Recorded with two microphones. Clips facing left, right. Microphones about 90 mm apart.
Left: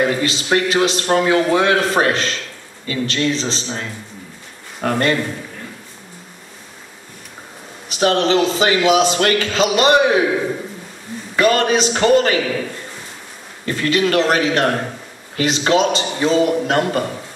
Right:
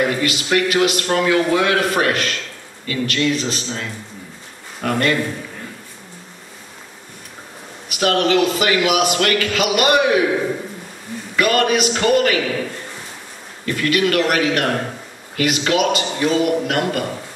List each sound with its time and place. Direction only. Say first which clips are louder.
0.0 s a man's voice: left 1 dB; 30° left (ahead or behind)
7.9 s a man's voice: left 1 dB; 30° left (ahead or behind)
11.3 s a man's voice: left 2 dB; 30° left (ahead or behind)
13.7 s a man's voice: left 1 dB; 30° left (ahead or behind)